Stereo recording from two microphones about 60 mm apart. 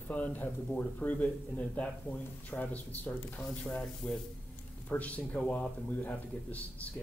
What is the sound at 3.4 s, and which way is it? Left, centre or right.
Speech, centre.